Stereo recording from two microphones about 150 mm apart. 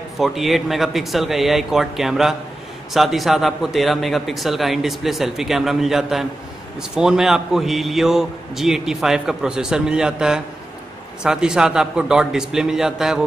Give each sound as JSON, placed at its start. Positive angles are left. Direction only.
{"t": 0.2, "sound": "a man's voice", "side_deg": 0}